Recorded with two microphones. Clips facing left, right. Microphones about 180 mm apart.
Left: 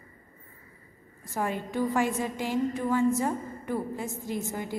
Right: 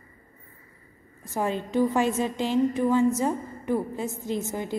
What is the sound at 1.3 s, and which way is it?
A woman's voice, 20° right (ahead or behind).